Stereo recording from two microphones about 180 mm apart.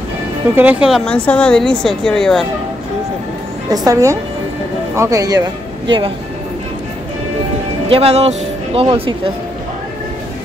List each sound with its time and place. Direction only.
0.6 s speech: 5° right (ahead or behind)
3.7 s a woman's voice: 20° right (ahead or behind)
7.9 s speech: 35° right (ahead or behind)